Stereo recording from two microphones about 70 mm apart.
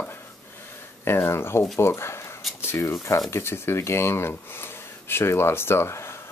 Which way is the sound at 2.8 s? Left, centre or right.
Left.